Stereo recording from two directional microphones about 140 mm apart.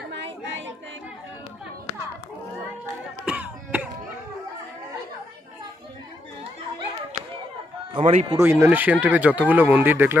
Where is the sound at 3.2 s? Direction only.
10° right (ahead or behind).